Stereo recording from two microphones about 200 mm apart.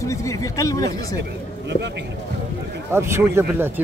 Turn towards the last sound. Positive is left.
turn(degrees=-10)  # may be behind; listen again after turning